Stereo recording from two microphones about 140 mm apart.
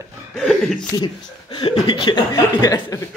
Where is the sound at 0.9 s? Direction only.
35° left (ahead or behind).